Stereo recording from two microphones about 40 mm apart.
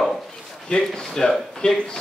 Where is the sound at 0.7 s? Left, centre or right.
Left.